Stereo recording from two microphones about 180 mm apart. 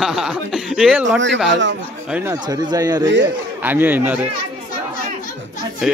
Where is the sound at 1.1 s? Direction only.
90° right.